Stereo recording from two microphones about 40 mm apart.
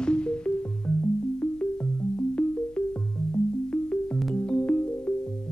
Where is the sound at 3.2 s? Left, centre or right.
Centre.